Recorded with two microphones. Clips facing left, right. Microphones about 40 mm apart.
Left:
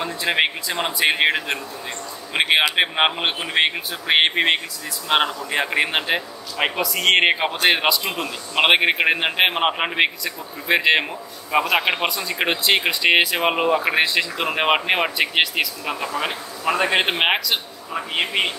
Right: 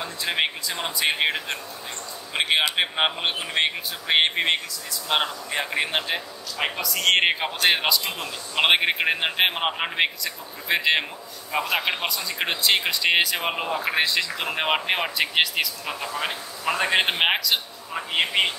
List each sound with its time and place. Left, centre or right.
0.0 s speech: left
6.8 s a man's voice: centre